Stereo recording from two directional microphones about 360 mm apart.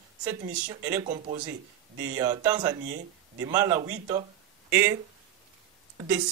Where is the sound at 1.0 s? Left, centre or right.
Centre.